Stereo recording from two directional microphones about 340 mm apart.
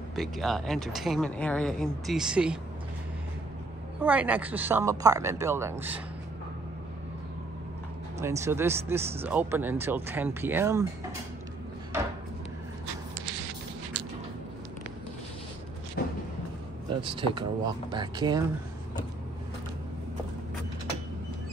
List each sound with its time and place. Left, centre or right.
0.1 s speech: centre
4.0 s speech: centre
8.2 s speech: centre
16.0 s a sound: left
17.0 s speech: centre